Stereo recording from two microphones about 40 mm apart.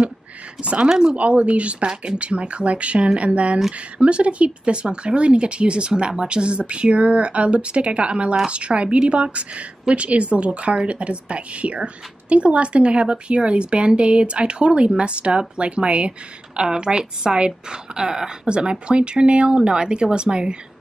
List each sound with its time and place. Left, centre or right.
0.8 s speech: centre
1.1 s a woman's voice: right